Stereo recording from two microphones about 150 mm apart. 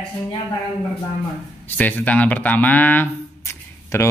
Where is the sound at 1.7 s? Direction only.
10° left (ahead or behind).